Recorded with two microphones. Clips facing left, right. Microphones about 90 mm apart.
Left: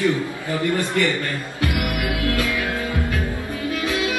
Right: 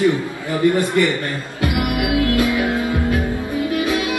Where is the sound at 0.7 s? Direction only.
20° right (ahead or behind).